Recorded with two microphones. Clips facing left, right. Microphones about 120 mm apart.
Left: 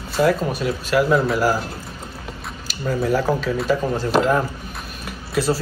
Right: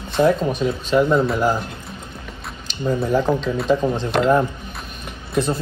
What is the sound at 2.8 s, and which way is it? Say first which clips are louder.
Speech: right 1 dB; 20° right (ahead or behind).